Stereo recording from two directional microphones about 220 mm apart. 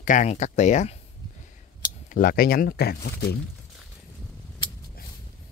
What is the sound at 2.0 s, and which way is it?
Speech, 40° left (ahead or behind).